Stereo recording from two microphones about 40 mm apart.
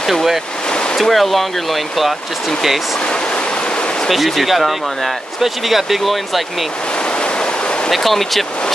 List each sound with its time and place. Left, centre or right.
0.0 s speech: centre
0.7 s stream: left
0.9 s speech: centre
3.1 s stream: left
4.1 s speech: centre
7.1 s ocean: left
7.9 s speech: centre